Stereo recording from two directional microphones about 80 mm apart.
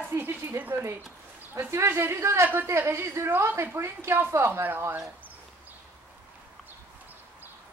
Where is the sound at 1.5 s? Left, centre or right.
Right.